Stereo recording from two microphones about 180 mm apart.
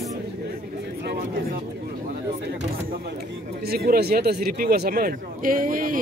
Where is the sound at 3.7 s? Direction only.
60° right (ahead or behind).